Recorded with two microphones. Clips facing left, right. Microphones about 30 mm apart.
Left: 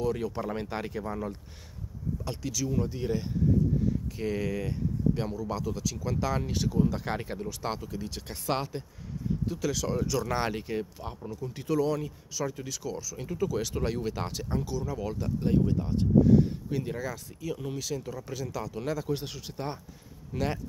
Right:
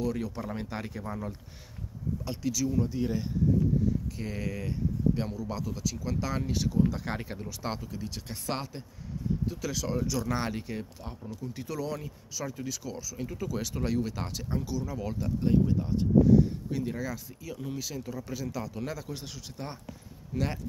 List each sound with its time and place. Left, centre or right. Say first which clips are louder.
0.0 s speech: left 2 dB; centre
10.2 s speech: left 2 dB; centre
19.1 s speech: left 5 dB; centre